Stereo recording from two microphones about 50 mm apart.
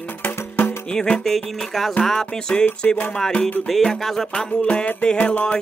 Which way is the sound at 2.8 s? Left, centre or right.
Left.